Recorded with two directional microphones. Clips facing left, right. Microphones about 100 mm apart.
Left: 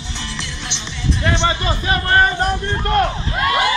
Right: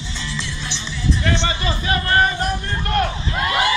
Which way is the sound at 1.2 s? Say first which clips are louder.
Left 6 dB; 25° left (ahead or behind).